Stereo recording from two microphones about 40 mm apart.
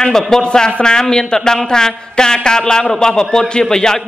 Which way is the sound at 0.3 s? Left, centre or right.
Centre.